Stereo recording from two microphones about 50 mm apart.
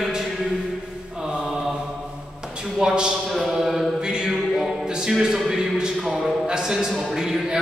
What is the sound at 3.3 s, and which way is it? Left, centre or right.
Mantra, centre.